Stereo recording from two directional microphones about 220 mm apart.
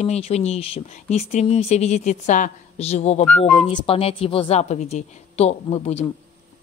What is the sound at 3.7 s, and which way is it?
A woman's voice, 25° left (ahead or behind).